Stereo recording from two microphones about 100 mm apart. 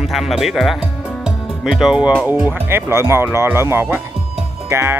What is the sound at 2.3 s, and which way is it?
Speech, 15° right (ahead or behind).